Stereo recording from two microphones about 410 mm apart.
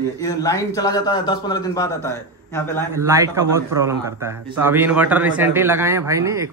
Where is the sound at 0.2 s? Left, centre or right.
Centre.